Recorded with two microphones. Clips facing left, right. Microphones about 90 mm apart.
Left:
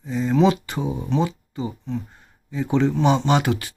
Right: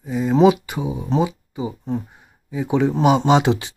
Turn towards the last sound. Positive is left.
turn(degrees=-20)  # may be behind; listen again after turning